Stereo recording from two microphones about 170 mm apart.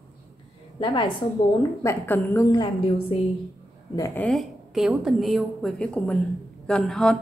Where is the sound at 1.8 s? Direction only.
15° left (ahead or behind).